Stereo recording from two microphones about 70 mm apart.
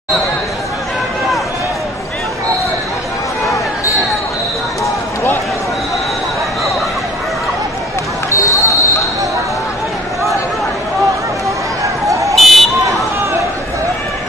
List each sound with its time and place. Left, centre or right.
8.3 s basketball bounce: left
11.8 s a sound: right
12.4 s buzzer: centre